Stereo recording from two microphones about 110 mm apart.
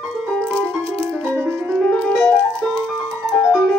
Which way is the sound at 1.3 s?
Centre (ahead or behind).